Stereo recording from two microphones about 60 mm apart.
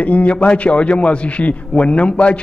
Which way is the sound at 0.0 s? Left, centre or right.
Left.